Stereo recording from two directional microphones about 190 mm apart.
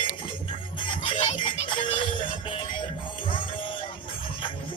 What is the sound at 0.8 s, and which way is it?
Music, 25° left (ahead or behind).